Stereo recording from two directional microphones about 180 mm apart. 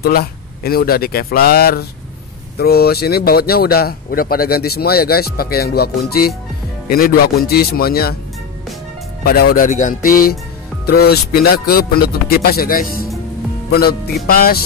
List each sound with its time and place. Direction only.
0.0 s speech: 60° left (ahead or behind)
9.2 s speech: 60° left (ahead or behind)